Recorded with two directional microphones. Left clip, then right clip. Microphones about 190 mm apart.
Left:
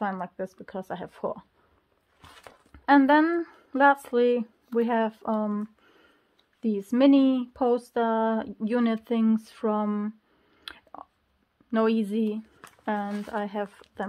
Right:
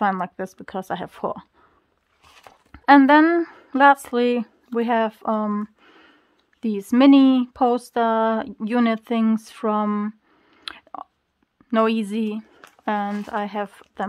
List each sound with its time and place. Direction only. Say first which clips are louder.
0.0 s speech: right 8 dB; 35° right (ahead or behind)
2.7 s speech: right 6 dB; 30° right (ahead or behind)